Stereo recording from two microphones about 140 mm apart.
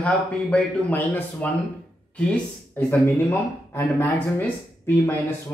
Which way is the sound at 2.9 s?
15° left (ahead or behind).